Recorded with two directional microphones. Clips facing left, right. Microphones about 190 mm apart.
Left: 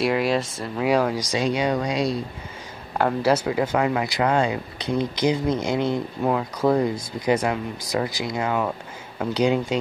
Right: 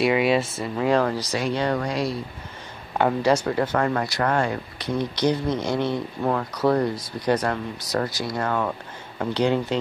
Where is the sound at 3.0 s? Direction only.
Centre (ahead or behind).